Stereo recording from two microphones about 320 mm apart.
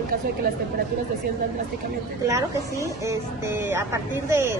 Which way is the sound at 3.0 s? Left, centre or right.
Centre.